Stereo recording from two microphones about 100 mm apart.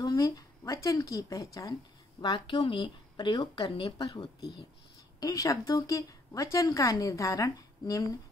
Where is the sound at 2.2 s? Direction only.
50° left (ahead or behind).